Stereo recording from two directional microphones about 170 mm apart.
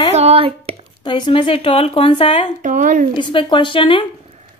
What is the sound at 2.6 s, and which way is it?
Speech, 50° right (ahead or behind).